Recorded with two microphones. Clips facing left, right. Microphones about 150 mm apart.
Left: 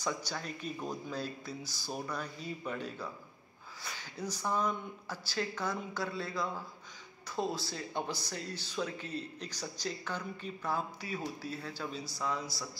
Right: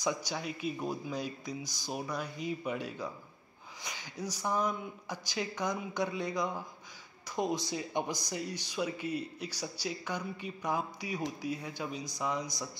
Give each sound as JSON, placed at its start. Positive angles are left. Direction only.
{"t": 0.0, "sound": "speech", "side_deg": -10}